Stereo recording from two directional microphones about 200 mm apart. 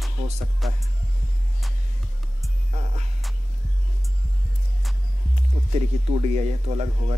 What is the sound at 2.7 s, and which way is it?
Music, 35° right (ahead or behind).